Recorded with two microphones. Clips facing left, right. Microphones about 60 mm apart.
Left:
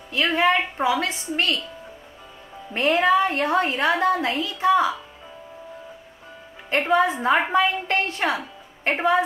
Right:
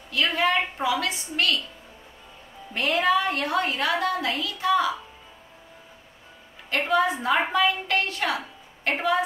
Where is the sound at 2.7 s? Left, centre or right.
Left.